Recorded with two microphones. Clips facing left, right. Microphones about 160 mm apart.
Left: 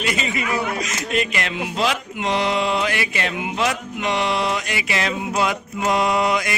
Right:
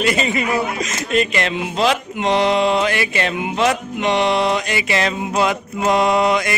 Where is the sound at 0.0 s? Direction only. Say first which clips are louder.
Right 6 dB; 45° right (ahead or behind).